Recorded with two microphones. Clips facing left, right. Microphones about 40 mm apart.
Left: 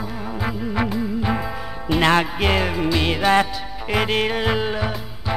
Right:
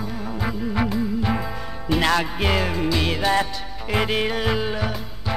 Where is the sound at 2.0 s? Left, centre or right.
Left.